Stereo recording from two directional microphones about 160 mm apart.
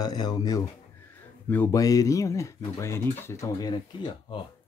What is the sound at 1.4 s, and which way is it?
Speech, 15° left (ahead or behind).